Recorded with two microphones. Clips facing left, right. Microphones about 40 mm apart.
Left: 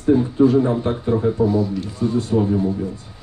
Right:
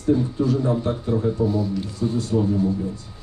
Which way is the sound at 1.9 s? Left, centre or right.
Left.